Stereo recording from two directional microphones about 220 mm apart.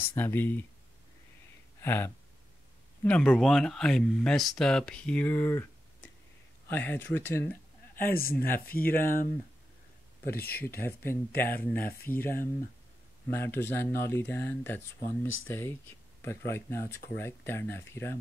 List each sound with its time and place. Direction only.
0.1 s speech: 10° left (ahead or behind)
1.8 s a sound: 10° left (ahead or behind)
3.0 s speech: 5° left (ahead or behind)
6.7 s speech: 10° left (ahead or behind)
8.0 s a man's voice: 40° left (ahead or behind)
10.3 s speech: 45° left (ahead or behind)
10.8 s speech: 10° left (ahead or behind)
13.3 s speech: 10° left (ahead or behind)